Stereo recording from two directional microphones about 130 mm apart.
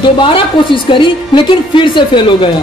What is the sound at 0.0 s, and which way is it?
A woman's voice, 40° left (ahead or behind).